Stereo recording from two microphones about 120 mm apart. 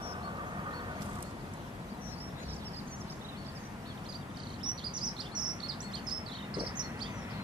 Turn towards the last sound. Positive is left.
turn(degrees=-40)  # may be behind; listen again after turning